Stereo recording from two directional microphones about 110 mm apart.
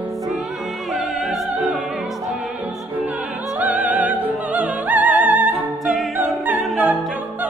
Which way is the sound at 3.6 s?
15° right (ahead or behind).